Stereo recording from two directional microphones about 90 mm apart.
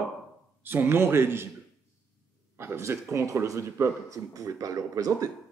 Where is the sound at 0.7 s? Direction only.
25° right (ahead or behind).